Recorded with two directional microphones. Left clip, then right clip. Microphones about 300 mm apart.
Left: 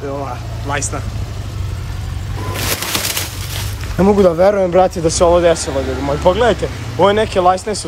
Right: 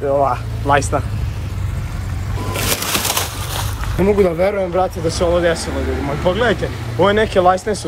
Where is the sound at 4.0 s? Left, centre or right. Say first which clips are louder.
Left 4 dB; centre.